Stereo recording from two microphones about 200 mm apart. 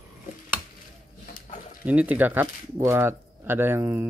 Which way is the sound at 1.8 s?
5° right (ahead or behind).